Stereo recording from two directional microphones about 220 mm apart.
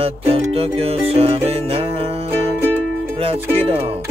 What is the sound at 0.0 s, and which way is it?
Music, 25° right (ahead or behind).